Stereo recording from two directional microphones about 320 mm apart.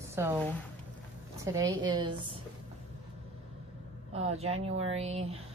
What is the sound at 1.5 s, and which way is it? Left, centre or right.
Speech, centre.